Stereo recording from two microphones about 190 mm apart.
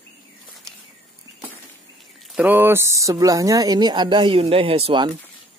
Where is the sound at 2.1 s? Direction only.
Centre (ahead or behind); by 5.1 s 25° right (ahead or behind).